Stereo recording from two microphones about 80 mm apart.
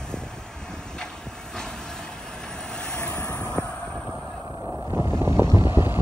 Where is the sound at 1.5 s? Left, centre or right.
Centre.